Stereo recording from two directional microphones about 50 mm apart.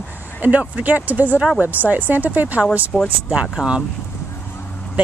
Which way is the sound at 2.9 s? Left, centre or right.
Centre.